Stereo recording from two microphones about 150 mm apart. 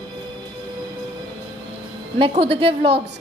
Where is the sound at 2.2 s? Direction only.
40° right (ahead or behind).